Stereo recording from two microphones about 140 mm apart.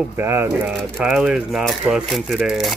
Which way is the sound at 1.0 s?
5° right (ahead or behind).